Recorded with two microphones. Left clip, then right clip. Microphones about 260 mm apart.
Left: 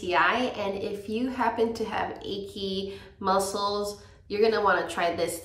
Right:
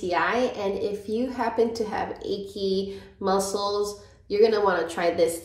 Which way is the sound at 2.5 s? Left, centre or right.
Centre.